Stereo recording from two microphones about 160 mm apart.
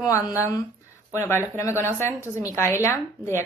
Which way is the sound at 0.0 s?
20° left (ahead or behind).